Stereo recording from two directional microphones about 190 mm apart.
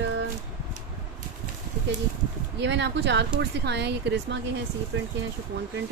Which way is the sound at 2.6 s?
70° right (ahead or behind).